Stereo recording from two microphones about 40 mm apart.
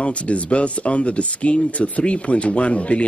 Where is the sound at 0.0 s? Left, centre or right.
Left.